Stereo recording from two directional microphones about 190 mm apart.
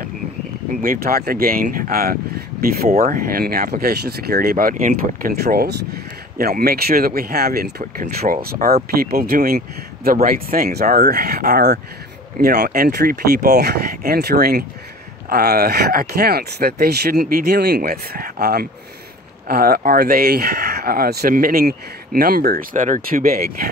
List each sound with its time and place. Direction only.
0.8 s speech: 50° right (ahead or behind)